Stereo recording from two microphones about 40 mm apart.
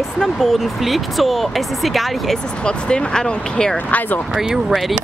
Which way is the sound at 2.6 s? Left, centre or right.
Left.